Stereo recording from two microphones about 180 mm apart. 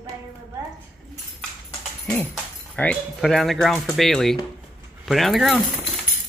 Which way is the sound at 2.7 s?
5° left (ahead or behind).